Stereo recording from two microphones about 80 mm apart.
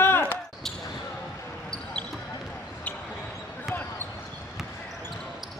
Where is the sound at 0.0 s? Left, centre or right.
Left.